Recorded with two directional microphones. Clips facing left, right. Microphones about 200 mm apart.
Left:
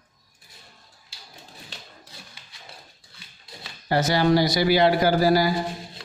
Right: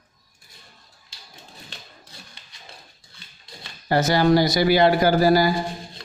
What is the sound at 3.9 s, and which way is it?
A man's voice, 50° right (ahead or behind).